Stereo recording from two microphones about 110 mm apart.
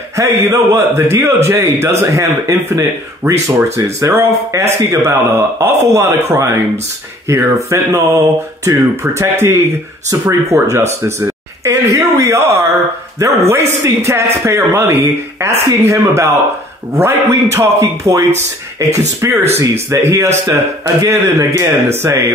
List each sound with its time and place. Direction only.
0.1 s a man's voice: 30° right (ahead or behind)